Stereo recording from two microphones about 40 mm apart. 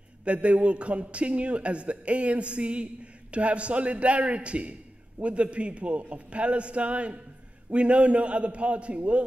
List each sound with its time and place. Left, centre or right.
0.2 s a man's voice: right